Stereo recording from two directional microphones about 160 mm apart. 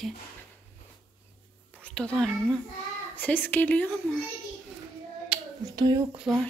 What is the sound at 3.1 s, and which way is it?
Speech, 10° left (ahead or behind).